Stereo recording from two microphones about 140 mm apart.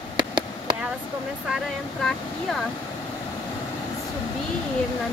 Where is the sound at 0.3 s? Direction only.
35° right (ahead or behind).